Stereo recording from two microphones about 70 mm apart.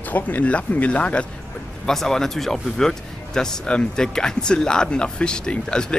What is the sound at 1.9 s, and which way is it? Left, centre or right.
Speech, centre.